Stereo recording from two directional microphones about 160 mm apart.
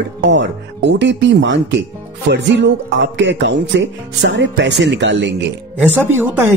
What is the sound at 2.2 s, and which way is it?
Speech, 90° right.